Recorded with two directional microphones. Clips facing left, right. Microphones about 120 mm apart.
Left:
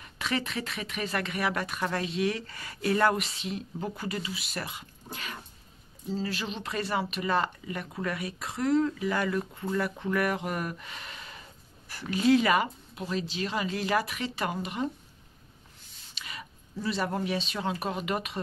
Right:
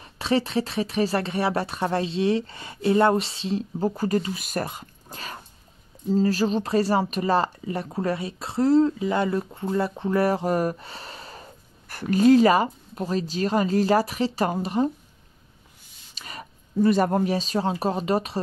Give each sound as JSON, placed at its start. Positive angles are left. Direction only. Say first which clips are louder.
{"t": 0.0, "sound": "speech", "louder": "right 8 dB", "side_deg": -30}
{"t": 11.9, "sound": "speech", "louder": "right 7 dB", "side_deg": -50}
{"t": 16.2, "sound": "speech", "louder": "right 4 dB", "side_deg": -40}